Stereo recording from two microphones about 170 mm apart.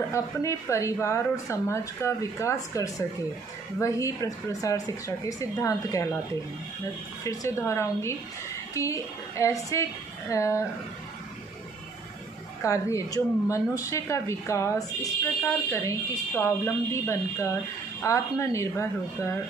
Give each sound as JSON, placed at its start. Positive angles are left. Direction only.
{"t": 0.1, "sound": "speech", "side_deg": 15}
{"t": 7.2, "sound": "speech", "side_deg": 15}
{"t": 12.6, "sound": "speech", "side_deg": 20}